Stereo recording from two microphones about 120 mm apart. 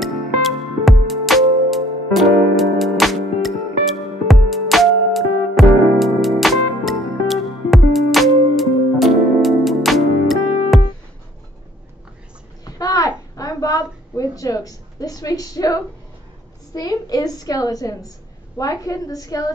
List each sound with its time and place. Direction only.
0.0 s music: centre (ahead or behind)
12.6 s a sound: 30° left (ahead or behind)
16.7 s a woman's voice: 30° left (ahead or behind)